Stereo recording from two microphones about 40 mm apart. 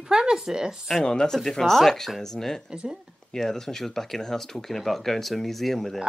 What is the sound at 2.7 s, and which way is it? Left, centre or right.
Speech, right.